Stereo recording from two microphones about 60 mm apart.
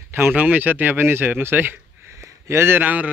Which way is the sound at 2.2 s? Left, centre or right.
Right.